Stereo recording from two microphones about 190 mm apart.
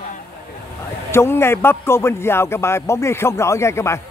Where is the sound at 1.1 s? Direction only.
15° left (ahead or behind).